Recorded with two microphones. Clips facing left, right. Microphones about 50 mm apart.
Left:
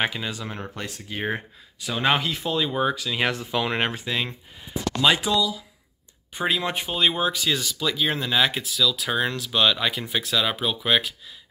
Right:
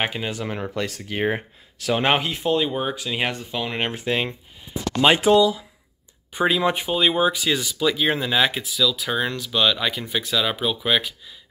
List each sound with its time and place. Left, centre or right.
0.1 s speech: right
0.7 s speech: right
2.0 s speech: right
3.3 s speech: centre
4.0 s speech: right
6.3 s speech: centre